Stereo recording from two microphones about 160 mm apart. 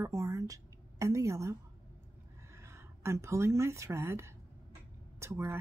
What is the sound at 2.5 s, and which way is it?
Speech, 15° right (ahead or behind).